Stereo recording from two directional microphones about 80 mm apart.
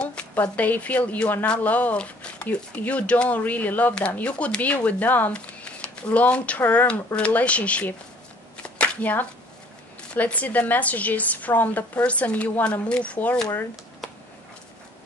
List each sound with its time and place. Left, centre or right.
0.0 s speech: centre
8.7 s a sound: centre
10.1 s a woman's voice: centre